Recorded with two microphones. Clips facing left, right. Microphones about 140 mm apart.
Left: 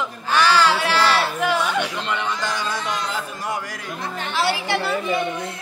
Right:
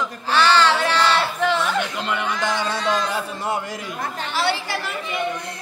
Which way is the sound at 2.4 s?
25° right (ahead or behind).